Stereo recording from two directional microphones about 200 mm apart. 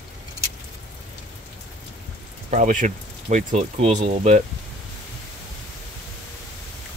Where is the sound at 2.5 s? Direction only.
40° right (ahead or behind).